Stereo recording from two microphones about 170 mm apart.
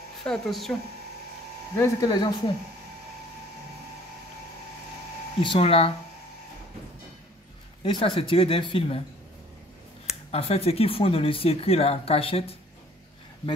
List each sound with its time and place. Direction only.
0.2 s speech: centre (ahead or behind)
1.8 s speech: 20° left (ahead or behind)
5.4 s speech: 30° left (ahead or behind)
7.8 s speech: 30° left (ahead or behind)
10.3 s speech: 35° left (ahead or behind)